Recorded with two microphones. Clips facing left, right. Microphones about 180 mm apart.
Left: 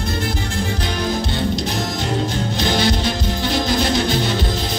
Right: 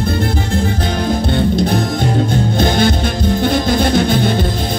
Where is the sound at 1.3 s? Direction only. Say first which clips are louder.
Right 7 dB; 55° right (ahead or behind).